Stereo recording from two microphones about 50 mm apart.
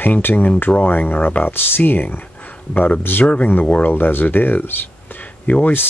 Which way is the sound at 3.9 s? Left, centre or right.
Left.